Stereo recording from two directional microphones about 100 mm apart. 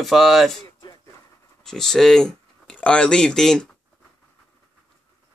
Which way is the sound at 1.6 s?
5° left (ahead or behind).